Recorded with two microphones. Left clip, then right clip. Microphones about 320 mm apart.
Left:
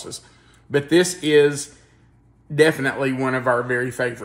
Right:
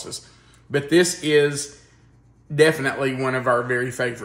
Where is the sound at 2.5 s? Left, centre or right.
Centre.